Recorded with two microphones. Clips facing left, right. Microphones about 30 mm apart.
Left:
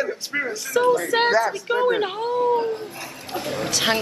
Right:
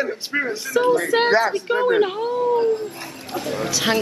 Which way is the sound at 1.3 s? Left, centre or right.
Right.